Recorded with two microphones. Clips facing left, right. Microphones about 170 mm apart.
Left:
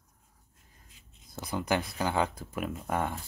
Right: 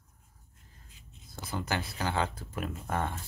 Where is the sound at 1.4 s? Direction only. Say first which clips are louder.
Left 4 dB; 15° left (ahead or behind).